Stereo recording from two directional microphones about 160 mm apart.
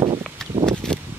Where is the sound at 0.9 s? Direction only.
5° left (ahead or behind).